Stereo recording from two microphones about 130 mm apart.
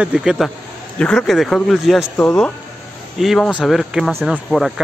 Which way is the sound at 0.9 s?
5° left (ahead or behind).